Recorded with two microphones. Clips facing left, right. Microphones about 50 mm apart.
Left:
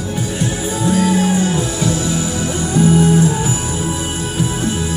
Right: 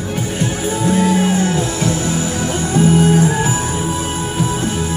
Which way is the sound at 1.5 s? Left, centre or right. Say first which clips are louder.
Even; right.